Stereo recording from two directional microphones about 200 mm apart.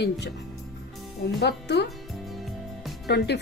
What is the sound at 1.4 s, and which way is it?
Speech, 55° left (ahead or behind).